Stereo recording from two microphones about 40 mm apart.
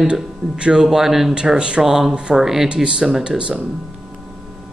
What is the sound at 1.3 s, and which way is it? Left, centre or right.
Speech, right.